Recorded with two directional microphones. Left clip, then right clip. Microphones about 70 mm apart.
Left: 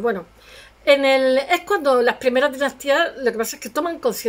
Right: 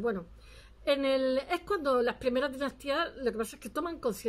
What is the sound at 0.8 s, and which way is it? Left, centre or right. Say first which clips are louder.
A woman's voice: left 13 dB; right.